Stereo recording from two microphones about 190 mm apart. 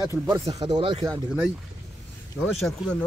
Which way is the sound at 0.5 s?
25° right (ahead or behind).